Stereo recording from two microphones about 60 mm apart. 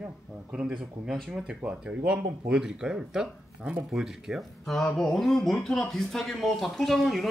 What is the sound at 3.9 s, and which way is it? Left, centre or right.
Speech, centre.